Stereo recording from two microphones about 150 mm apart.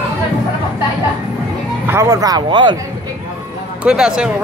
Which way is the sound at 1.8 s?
20° right (ahead or behind).